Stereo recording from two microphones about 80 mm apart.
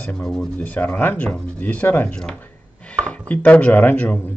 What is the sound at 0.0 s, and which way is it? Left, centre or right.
Speech, centre.